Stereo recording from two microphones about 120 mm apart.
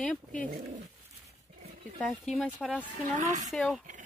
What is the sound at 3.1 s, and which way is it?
Speech, 90° right.